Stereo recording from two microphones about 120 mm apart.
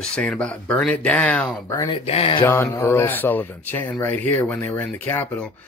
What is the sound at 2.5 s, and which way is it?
Speech, 20° left (ahead or behind).